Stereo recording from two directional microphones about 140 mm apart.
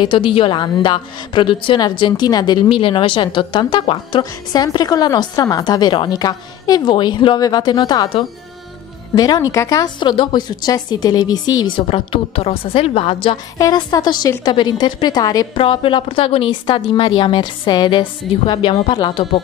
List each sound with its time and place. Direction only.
0.0 s a woman's voice: 40° left (ahead or behind)
11.9 s a woman's voice: 40° left (ahead or behind)
13.6 s speech: 30° left (ahead or behind)
15.5 s a woman's voice: 40° left (ahead or behind)